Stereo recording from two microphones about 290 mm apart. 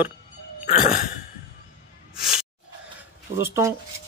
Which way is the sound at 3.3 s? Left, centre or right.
Centre.